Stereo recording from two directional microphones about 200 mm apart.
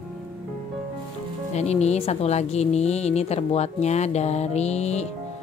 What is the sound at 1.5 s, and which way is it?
A woman's voice, 35° left (ahead or behind).